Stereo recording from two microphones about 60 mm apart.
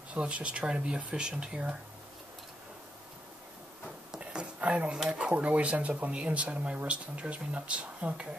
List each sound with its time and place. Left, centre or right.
0.1 s speech: centre
4.2 s a sound: centre
5.0 s speech: centre